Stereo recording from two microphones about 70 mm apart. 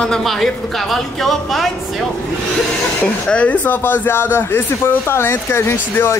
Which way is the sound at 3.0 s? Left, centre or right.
Centre.